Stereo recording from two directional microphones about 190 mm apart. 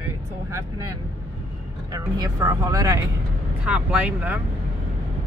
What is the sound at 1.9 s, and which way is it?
Speech, 20° right (ahead or behind).